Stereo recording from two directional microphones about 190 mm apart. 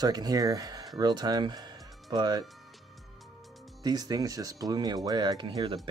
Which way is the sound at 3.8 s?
20° right (ahead or behind).